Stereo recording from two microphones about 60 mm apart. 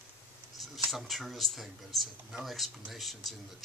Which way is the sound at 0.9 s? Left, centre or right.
Centre.